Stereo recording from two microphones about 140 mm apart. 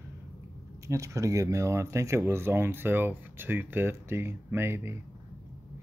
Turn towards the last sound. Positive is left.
turn(degrees=-15)  # may be behind; listen again after turning